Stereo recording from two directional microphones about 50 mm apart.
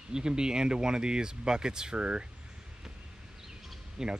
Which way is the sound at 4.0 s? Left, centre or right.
Centre.